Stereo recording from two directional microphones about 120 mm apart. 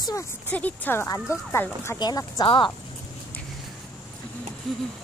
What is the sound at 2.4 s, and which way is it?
Speech, 45° left (ahead or behind).